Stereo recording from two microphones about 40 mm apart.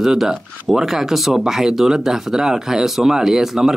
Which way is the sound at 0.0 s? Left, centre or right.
Centre.